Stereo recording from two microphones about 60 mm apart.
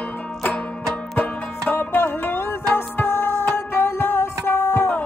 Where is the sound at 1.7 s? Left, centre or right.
Left.